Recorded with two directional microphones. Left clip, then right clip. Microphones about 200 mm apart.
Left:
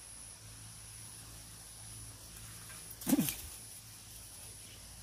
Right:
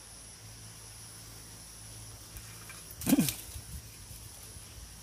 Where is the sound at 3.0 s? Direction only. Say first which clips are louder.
Right 5 dB; 45° right (ahead or behind).